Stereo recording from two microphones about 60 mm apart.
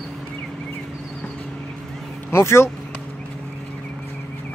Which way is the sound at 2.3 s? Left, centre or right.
Left.